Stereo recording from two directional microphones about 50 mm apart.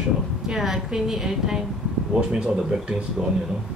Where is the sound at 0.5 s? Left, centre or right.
Centre.